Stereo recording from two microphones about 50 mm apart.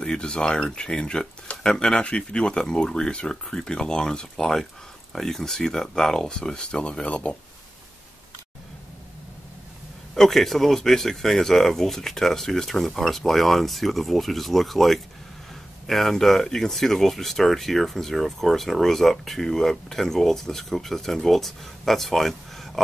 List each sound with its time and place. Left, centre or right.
0.0 s speech: centre
10.1 s speech: centre